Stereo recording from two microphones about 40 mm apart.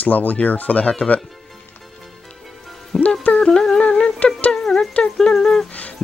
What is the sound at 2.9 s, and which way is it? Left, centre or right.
Music, left.